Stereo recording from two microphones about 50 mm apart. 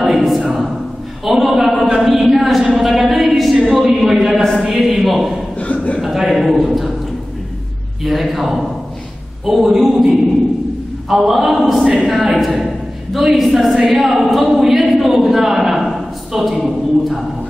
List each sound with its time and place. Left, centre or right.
0.0 s a sound: centre
1.2 s a man's voice: centre
5.6 s chuckle: left
5.9 s a man's voice: centre
8.0 s a man's voice: centre
11.1 s a man's voice: centre